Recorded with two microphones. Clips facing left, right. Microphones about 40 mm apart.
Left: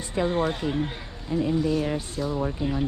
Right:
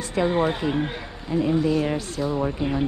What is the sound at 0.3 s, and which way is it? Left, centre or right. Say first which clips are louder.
Speech: right 3 dB; centre.